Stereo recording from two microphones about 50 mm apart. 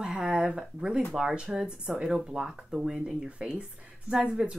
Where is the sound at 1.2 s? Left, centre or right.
Centre.